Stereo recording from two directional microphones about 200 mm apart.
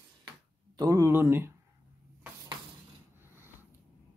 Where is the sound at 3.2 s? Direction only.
10° right (ahead or behind).